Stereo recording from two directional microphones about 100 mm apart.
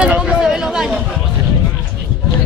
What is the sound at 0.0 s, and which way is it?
Chatter, 10° right (ahead or behind).